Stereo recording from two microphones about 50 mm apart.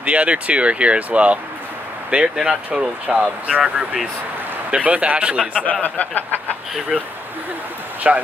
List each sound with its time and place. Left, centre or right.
0.0 s speech: right
2.2 s speech: centre
5.5 s speech: left
8.0 s speech: right